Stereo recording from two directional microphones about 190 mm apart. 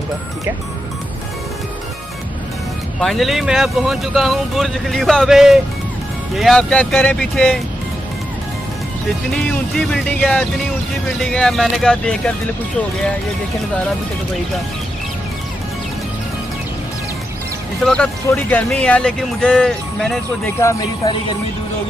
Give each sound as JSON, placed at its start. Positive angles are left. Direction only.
{"t": 3.0, "sound": "speech", "side_deg": 0}
{"t": 9.3, "sound": "speech", "side_deg": 5}
{"t": 17.8, "sound": "speech", "side_deg": 5}